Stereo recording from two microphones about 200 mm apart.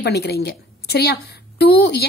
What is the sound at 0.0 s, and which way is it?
A woman's voice, 55° left (ahead or behind).